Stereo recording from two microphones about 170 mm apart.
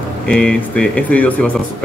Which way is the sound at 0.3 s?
5° left (ahead or behind).